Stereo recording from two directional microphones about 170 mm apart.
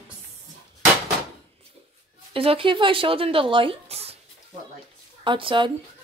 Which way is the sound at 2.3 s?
35° right (ahead or behind).